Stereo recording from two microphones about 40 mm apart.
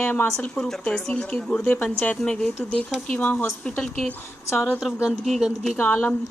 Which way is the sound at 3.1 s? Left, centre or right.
Left.